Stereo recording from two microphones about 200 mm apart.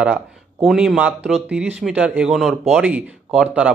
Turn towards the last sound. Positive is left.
turn(degrees=-5)  # may be behind; listen again after turning